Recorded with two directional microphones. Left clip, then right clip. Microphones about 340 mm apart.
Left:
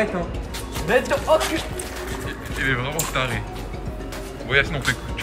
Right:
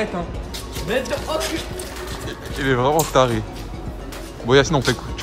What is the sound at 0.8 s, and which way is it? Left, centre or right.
Speech, centre.